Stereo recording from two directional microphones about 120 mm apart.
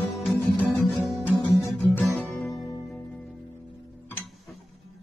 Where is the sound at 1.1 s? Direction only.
5° right (ahead or behind).